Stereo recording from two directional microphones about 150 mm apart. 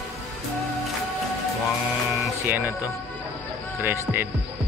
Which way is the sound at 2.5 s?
15° right (ahead or behind).